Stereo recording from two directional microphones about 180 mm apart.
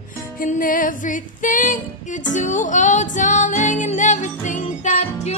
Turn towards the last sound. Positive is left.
turn(degrees=40)  # may be behind; listen again after turning